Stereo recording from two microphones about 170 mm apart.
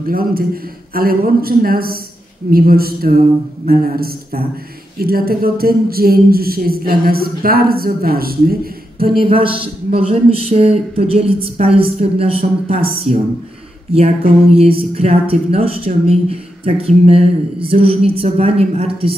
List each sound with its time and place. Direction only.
0.1 s speech: 60° right (ahead or behind)
9.2 s speech: 35° right (ahead or behind)